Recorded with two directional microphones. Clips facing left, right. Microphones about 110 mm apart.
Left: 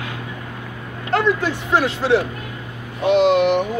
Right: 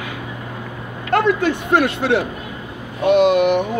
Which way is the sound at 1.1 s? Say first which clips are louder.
Right 2 dB; 55° right (ahead or behind).